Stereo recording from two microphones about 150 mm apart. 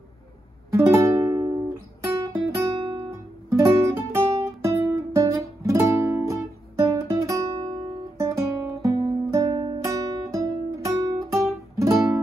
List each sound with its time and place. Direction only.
0.7 s music: 20° right (ahead or behind)
2.1 s guitar: 20° right (ahead or behind)
2.8 s guitar: 35° right (ahead or behind)
3.1 s guitar: 20° right (ahead or behind)